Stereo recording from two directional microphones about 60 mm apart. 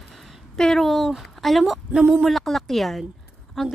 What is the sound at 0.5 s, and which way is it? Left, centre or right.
A woman's voice, centre.